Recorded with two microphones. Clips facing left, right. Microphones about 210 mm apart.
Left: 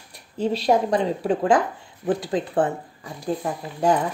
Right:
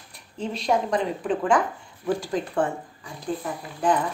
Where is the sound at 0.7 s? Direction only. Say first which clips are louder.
Left 2 dB; 40° left (ahead or behind).